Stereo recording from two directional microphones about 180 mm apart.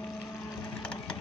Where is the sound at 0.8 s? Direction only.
5° left (ahead or behind).